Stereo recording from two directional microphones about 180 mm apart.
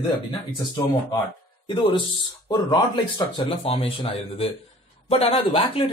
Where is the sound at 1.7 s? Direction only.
25° left (ahead or behind).